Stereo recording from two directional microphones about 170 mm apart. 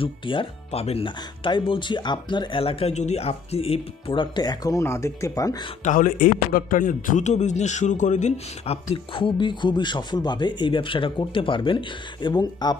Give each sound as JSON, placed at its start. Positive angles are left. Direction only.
{"t": 0.0, "sound": "speech", "side_deg": 30}
{"t": 5.9, "sound": "a man's voice", "side_deg": 55}